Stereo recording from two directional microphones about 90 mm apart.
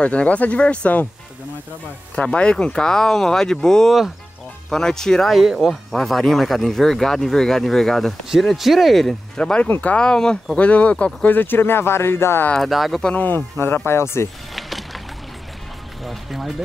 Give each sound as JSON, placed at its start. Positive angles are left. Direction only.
{"t": 0.0, "sound": "speech", "side_deg": 15}
{"t": 2.1, "sound": "speech", "side_deg": 10}
{"t": 12.5, "sound": "speech", "side_deg": 0}
{"t": 13.0, "sound": "speech", "side_deg": 20}
{"t": 14.5, "sound": "music", "side_deg": 0}
{"t": 16.0, "sound": "speech", "side_deg": 0}